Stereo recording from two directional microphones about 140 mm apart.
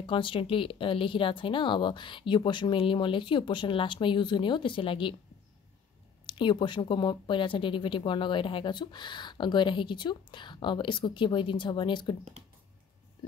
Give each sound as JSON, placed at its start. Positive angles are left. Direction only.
{"t": 0.0, "sound": "speech", "side_deg": 40}
{"t": 6.2, "sound": "speech", "side_deg": 35}